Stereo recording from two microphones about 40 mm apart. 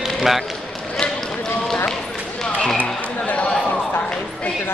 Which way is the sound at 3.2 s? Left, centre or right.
Left.